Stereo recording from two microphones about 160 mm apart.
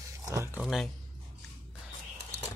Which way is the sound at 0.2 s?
20° right (ahead or behind).